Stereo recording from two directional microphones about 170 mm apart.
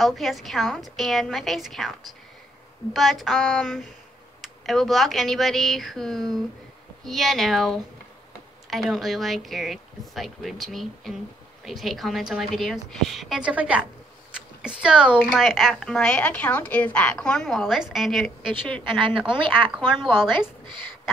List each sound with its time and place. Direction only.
0.0 s speech: centre (ahead or behind)
18.8 s a woman's voice: 30° right (ahead or behind)